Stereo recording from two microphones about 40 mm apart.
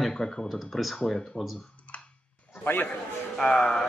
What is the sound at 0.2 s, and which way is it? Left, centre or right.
Speech, left.